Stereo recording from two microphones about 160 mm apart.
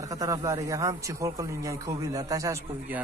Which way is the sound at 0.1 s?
20° right (ahead or behind).